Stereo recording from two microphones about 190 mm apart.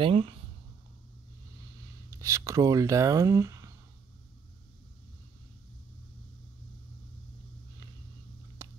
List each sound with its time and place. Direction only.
0.0 s speech: 30° right (ahead or behind)
2.0 s speech: 15° right (ahead or behind)
8.6 s a sound: 15° right (ahead or behind)